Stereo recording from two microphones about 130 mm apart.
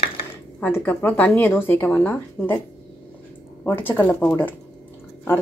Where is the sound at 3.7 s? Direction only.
15° left (ahead or behind).